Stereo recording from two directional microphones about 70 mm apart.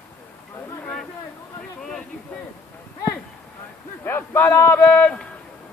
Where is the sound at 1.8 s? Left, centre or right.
Centre.